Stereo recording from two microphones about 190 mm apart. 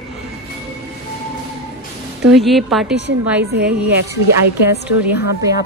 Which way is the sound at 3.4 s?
60° right (ahead or behind).